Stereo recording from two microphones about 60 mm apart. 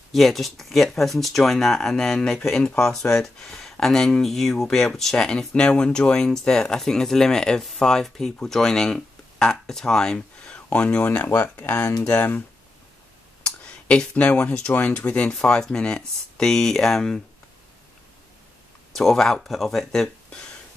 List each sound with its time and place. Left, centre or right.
0.1 s speech: centre
11.1 s speech: left
11.4 s speech: left
13.4 s speech: centre
15.3 s speech: centre
18.9 s speech: centre